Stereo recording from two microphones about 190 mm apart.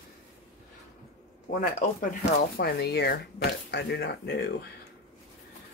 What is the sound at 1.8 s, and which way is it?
Speech, 45° left (ahead or behind).